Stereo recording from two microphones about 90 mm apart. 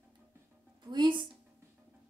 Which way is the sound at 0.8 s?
55° right (ahead or behind).